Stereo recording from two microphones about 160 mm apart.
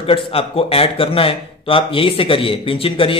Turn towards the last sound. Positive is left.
turn(degrees=35)  # may be behind; listen again after turning